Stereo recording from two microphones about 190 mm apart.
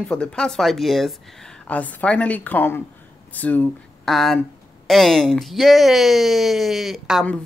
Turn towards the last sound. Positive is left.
turn(degrees=0)  # may be behind; listen again after turning